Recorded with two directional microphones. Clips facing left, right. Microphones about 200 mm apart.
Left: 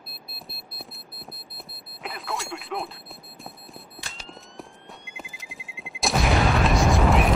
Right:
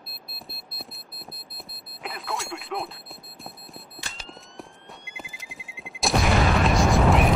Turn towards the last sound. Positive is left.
turn(degrees=0)  # may be behind; listen again after turning